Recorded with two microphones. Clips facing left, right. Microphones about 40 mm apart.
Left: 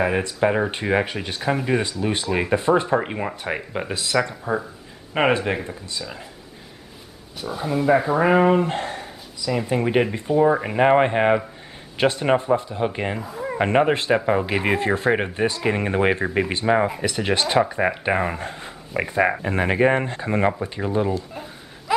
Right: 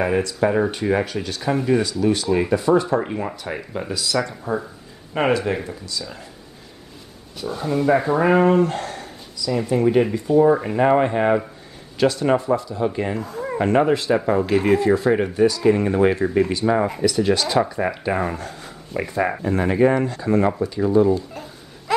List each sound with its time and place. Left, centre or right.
0.2 s speech: left
7.3 s speech: centre
8.6 s a sound: left
9.7 s speech: left
10.6 s speech: left
13.1 s speech: centre
13.6 s speech: left
21.3 s a sound: centre